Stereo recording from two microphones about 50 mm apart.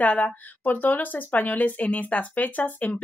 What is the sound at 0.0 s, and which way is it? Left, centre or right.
Speech, left.